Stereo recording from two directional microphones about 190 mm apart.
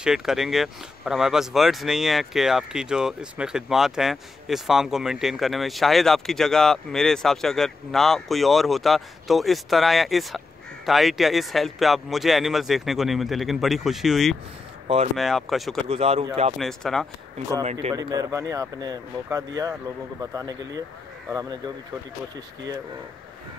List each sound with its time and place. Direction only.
0.0 s speech: centre (ahead or behind)
15.9 s speech: 30° right (ahead or behind)
16.5 s speech: centre (ahead or behind)
17.9 s speech: 20° right (ahead or behind)